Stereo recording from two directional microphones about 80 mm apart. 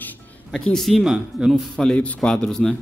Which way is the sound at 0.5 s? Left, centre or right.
Centre.